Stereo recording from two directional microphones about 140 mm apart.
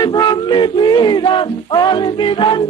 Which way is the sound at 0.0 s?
30° left (ahead or behind).